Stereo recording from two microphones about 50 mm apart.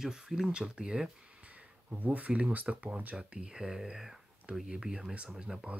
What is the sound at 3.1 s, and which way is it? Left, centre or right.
Speech, centre.